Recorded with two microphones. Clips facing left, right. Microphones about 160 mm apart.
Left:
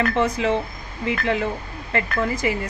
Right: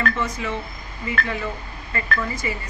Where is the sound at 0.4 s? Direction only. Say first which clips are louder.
Left 7 dB; 90° left; by 2.6 s 70° left (ahead or behind).